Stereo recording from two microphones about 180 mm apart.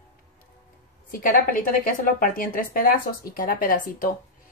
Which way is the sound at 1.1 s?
50° left (ahead or behind).